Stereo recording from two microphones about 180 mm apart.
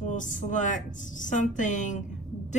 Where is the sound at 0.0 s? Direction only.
45° left (ahead or behind).